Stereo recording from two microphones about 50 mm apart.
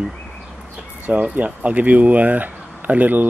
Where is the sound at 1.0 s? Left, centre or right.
Right.